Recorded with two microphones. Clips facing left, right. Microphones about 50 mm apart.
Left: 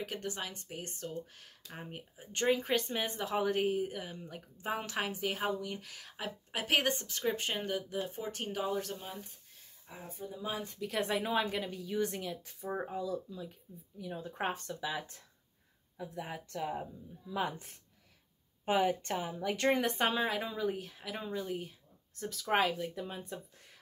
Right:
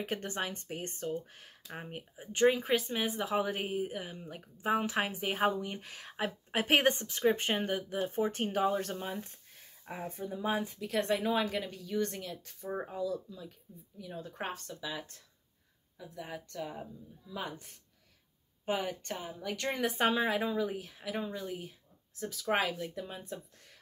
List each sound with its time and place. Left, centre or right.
0.0 s a woman's voice: right
7.0 s a woman's voice: centre; by 10.4 s right
10.7 s speech: centre
18.7 s speech: centre
19.7 s speech: centre